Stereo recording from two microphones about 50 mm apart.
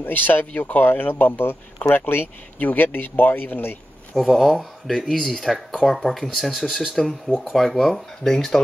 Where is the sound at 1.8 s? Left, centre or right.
Left.